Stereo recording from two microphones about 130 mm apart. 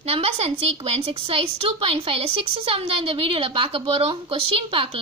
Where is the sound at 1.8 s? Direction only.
45° right (ahead or behind).